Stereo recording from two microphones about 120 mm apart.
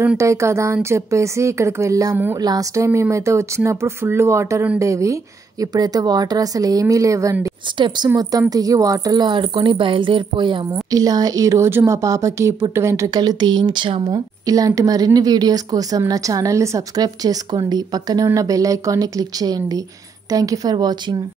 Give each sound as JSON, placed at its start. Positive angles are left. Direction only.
{"t": 0.2, "sound": "a woman's voice", "side_deg": -25}
{"t": 7.7, "sound": "a woman's voice", "side_deg": -40}
{"t": 10.7, "sound": "a woman's voice", "side_deg": -30}
{"t": 14.1, "sound": "a woman's voice", "side_deg": -30}